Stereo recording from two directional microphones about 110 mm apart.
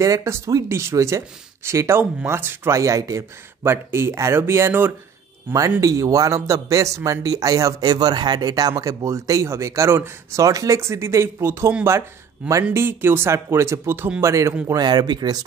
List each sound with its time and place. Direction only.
0.0 s speech: 30° right (ahead or behind)
12.7 s speech: 20° right (ahead or behind)
14.7 s speech: 40° right (ahead or behind)